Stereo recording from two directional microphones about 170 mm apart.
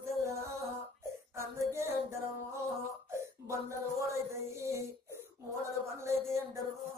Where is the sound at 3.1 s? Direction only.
15° right (ahead or behind).